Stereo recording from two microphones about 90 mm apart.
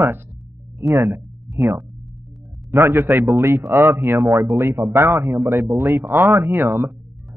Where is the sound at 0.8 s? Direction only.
35° right (ahead or behind).